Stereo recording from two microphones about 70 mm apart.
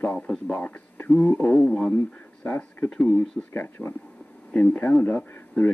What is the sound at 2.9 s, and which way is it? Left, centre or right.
Speech, centre.